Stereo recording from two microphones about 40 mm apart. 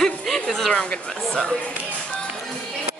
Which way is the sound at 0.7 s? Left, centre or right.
Left.